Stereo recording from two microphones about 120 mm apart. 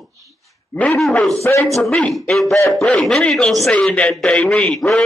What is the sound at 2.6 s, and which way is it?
Speech, 25° left (ahead or behind).